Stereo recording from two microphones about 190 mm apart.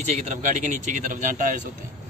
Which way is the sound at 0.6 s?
40° right (ahead or behind).